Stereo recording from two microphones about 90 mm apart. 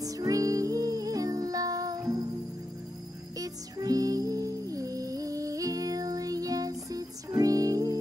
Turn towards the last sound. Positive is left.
turn(degrees=-40)  # may be behind; listen again after turning